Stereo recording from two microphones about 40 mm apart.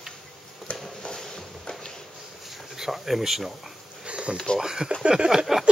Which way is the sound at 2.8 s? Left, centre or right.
Centre.